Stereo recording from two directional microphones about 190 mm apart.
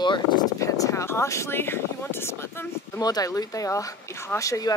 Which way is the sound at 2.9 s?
20° left (ahead or behind).